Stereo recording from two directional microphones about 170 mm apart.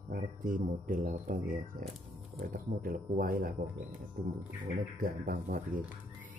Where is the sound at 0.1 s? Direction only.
50° right (ahead or behind).